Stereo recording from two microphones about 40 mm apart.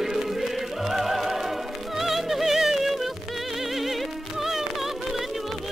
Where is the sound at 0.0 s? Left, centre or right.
Centre.